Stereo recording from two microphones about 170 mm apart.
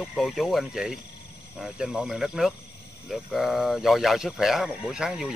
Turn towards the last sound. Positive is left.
turn(degrees=-5)  # may be behind; listen again after turning